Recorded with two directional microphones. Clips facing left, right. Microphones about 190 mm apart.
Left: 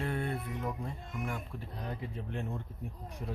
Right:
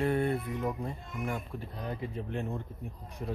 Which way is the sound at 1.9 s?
5° right (ahead or behind).